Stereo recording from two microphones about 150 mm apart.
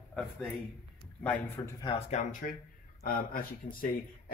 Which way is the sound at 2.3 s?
70° left (ahead or behind).